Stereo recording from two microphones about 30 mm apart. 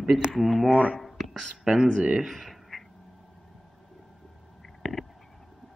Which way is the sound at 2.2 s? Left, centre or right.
Centre.